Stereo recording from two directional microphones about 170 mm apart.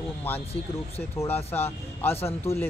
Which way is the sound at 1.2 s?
10° left (ahead or behind).